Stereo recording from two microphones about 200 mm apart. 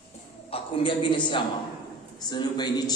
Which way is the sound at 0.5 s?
25° left (ahead or behind).